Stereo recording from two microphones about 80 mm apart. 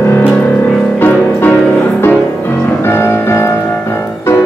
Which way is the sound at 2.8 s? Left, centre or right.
Left.